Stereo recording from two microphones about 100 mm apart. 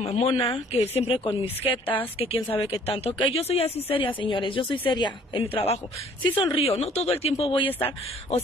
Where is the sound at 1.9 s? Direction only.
70° left (ahead or behind); by 5.4 s 50° left (ahead or behind).